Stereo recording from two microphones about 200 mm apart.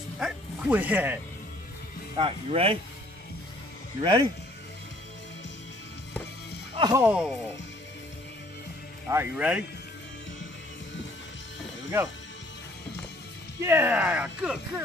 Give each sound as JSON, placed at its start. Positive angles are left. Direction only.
{"t": 0.2, "sound": "speech", "side_deg": -10}
{"t": 2.1, "sound": "speech", "side_deg": -25}
{"t": 4.0, "sound": "speech", "side_deg": -25}
{"t": 6.7, "sound": "music", "side_deg": -25}
{"t": 7.0, "sound": "speech", "side_deg": -10}
{"t": 9.1, "sound": "speech", "side_deg": -10}
{"t": 13.6, "sound": "speech", "side_deg": -10}